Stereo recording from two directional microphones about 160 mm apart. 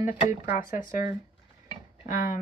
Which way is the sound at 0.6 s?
20° right (ahead or behind).